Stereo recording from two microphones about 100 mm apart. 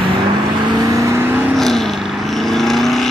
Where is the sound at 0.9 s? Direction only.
30° right (ahead or behind).